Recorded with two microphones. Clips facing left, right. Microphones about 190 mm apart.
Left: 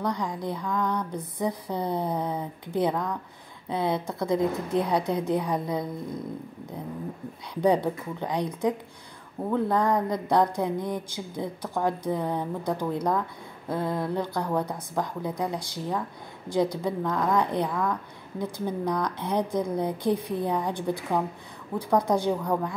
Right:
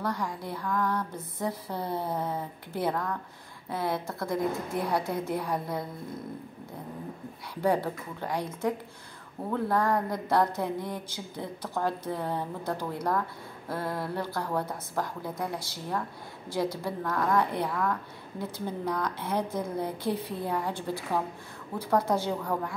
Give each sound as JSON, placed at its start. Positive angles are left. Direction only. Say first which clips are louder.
{"t": 0.0, "sound": "speech", "louder": "left 3 dB", "side_deg": 15}
{"t": 7.6, "sound": "speech", "louder": "left 4 dB", "side_deg": 20}